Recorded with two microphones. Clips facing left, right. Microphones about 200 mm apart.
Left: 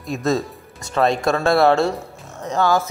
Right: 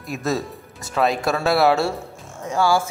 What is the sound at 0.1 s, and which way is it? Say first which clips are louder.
A man's voice: left 3 dB; 5° right (ahead or behind).